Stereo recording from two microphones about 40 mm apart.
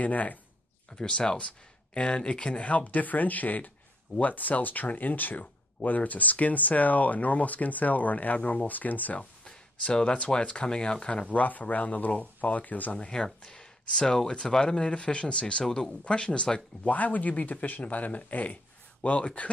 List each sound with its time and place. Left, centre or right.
0.0 s speech: left
0.9 s speech: left
9.2 s speech: left
11.3 s speech: left
12.9 s speech: left
15.6 s speech: centre
16.0 s speech: left
16.9 s speech: left